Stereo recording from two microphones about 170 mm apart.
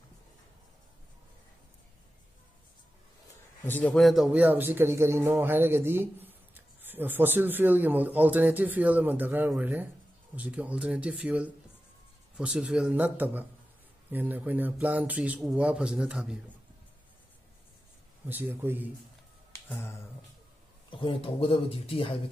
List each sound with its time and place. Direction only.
3.6 s speech: 10° left (ahead or behind); by 16.3 s 5° right (ahead or behind)
18.3 s speech: 10° right (ahead or behind)
19.5 s finger snapping: 15° left (ahead or behind)
20.9 s speech: 30° left (ahead or behind)